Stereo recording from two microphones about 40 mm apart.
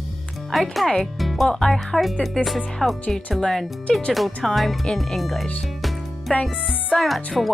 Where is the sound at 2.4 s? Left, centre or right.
Centre.